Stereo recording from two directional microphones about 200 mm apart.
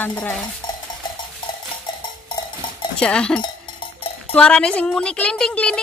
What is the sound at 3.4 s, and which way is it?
Cowbell, 25° left (ahead or behind).